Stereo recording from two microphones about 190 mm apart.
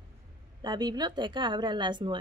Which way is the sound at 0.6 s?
20° right (ahead or behind).